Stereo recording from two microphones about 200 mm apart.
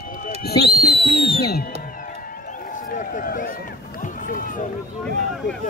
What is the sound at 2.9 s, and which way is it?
Speech, 40° left (ahead or behind).